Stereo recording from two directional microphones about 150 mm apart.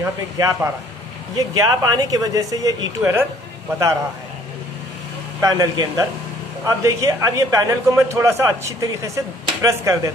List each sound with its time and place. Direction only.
0.0 s a man's voice: 20° right (ahead or behind)
5.4 s a man's voice: 25° right (ahead or behind)